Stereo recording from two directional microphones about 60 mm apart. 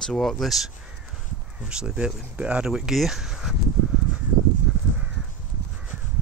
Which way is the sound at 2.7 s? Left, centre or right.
Centre.